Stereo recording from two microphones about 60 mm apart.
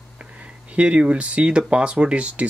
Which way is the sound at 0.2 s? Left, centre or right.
Right.